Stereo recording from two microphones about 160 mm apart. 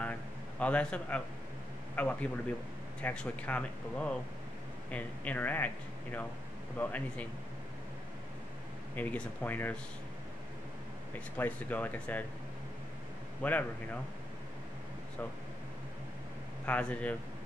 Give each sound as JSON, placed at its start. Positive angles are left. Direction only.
{"t": 0.0, "sound": "a sound", "side_deg": 10}
{"t": 2.0, "sound": "speech", "side_deg": 5}
{"t": 6.8, "sound": "speech", "side_deg": 10}
{"t": 8.9, "sound": "speech", "side_deg": 10}
{"t": 11.1, "sound": "speech", "side_deg": 10}
{"t": 13.4, "sound": "speech", "side_deg": 10}
{"t": 16.6, "sound": "speech", "side_deg": 10}